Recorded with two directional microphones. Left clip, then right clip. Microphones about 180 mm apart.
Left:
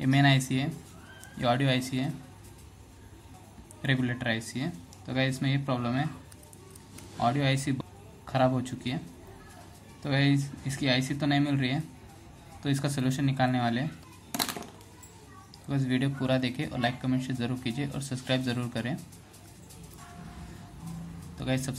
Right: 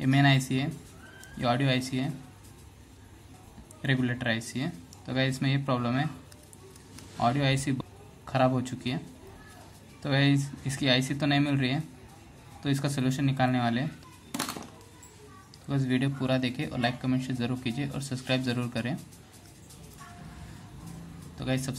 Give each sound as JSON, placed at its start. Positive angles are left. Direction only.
{"t": 0.0, "sound": "speech", "side_deg": 0}
{"t": 3.8, "sound": "speech", "side_deg": -5}
{"t": 7.2, "sound": "speech", "side_deg": -5}
{"t": 10.0, "sound": "speech", "side_deg": -10}
{"t": 14.3, "sound": "music", "side_deg": 30}
{"t": 15.7, "sound": "speech", "side_deg": -5}
{"t": 21.4, "sound": "speech", "side_deg": 0}